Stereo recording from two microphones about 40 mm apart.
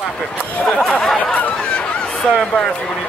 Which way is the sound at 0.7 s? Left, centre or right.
Centre.